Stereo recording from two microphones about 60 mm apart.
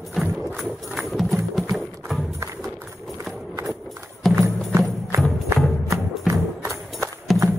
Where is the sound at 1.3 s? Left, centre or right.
Centre.